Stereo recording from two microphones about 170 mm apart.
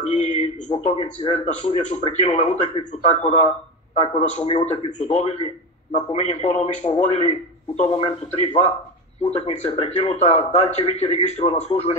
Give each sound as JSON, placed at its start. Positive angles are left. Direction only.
{"t": 0.0, "sound": "a man's voice", "side_deg": 40}